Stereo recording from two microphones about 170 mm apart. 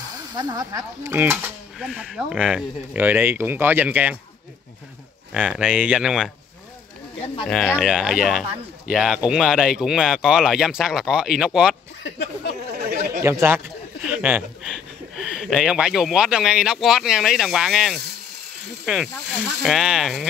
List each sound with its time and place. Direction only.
0.4 s speech: 25° right (ahead or behind)
5.3 s speech: 5° right (ahead or behind)
7.4 s speech: 5° left (ahead or behind)
12.7 s chatter: 70° right (ahead or behind)
13.2 s speech: 15° right (ahead or behind)
19.6 s speech: 5° right (ahead or behind)